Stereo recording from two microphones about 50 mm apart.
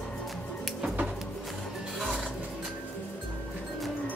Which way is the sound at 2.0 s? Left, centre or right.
Centre.